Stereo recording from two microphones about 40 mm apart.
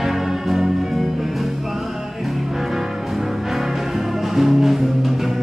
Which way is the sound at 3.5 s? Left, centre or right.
Centre.